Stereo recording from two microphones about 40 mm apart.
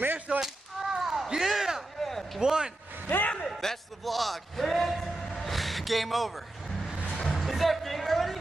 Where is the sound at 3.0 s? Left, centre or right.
Left.